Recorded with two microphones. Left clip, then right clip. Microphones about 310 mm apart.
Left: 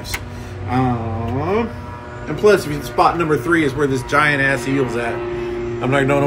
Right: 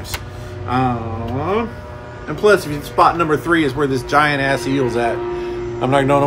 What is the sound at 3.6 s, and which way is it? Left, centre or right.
Speech, right.